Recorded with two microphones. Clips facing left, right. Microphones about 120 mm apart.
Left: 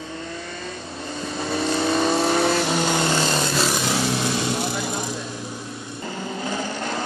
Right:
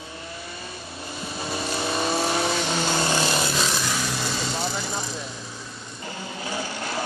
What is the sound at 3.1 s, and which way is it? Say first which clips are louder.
Vehicle: left 2 dB; 15° right (ahead or behind).